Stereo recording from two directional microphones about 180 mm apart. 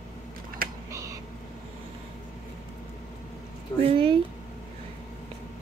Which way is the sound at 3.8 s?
30° right (ahead or behind).